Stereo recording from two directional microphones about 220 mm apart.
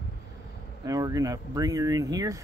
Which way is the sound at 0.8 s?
15° right (ahead or behind).